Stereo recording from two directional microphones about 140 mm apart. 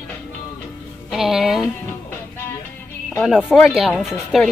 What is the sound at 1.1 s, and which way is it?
Speech, 5° right (ahead or behind).